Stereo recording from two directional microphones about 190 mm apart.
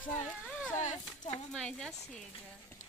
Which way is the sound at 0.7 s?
40° left (ahead or behind).